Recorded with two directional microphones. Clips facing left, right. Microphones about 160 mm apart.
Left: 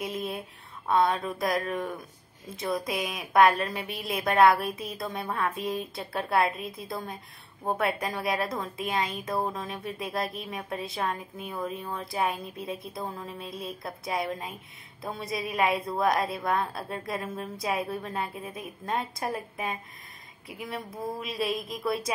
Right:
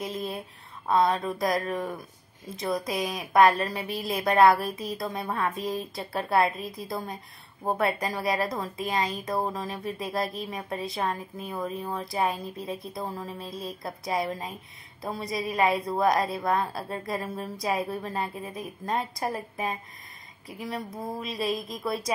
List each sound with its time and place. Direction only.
0.8 s a woman's voice: centre (ahead or behind)